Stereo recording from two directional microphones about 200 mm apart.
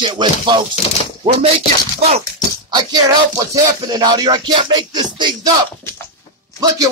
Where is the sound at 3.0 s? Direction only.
20° right (ahead or behind).